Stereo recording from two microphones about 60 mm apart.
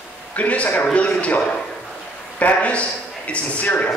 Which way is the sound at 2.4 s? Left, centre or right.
Left.